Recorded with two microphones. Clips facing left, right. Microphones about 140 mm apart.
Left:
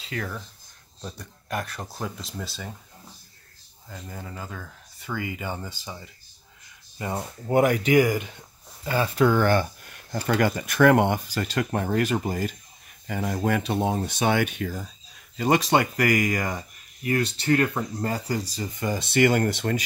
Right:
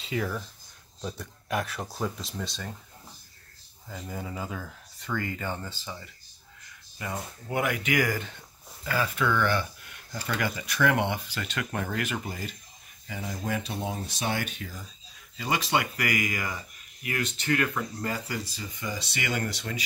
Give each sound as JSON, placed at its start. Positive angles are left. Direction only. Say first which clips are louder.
{"t": 0.0, "sound": "speech", "louder": "right 2 dB", "side_deg": 0}
{"t": 3.9, "sound": "speech", "louder": "right 2 dB", "side_deg": -5}
{"t": 5.0, "sound": "speech", "louder": "left 1 dB", "side_deg": 10}
{"t": 7.0, "sound": "speech", "louder": "left 5 dB", "side_deg": 35}
{"t": 8.0, "sound": "speech", "louder": "left 6 dB", "side_deg": 15}
{"t": 8.8, "sound": "speech", "louder": "left 6 dB", "side_deg": 30}
{"t": 13.0, "sound": "speech", "louder": "left 8 dB", "side_deg": 60}
{"t": 15.3, "sound": "speech", "louder": "left 7 dB", "side_deg": 45}